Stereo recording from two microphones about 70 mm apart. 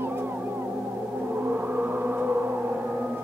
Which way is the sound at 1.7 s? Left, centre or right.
Right.